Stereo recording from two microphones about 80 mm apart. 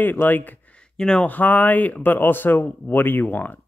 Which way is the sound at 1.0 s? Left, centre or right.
Centre.